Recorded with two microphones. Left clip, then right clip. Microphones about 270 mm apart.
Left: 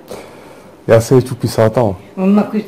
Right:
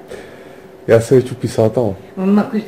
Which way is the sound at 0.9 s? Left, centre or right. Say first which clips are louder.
Left 1 dB; left.